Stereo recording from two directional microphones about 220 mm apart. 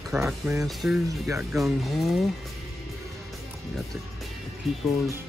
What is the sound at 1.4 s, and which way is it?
Speech, centre (ahead or behind).